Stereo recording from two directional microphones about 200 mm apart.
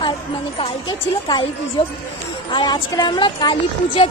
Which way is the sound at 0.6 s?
25° left (ahead or behind).